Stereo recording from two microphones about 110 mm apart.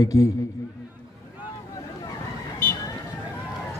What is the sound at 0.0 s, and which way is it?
Speech, 30° left (ahead or behind).